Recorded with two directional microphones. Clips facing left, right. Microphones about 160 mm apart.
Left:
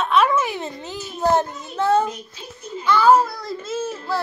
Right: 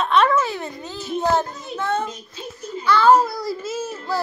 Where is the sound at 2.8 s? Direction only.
15° left (ahead or behind).